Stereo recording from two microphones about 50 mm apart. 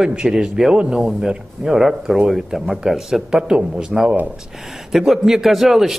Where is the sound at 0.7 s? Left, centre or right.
Centre.